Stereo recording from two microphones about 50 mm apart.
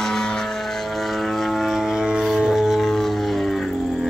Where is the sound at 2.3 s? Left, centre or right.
Centre.